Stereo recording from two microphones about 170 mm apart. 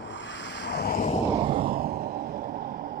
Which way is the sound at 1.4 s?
30° right (ahead or behind).